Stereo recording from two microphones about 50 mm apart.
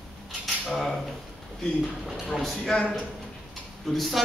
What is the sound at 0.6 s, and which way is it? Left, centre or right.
Speech, centre.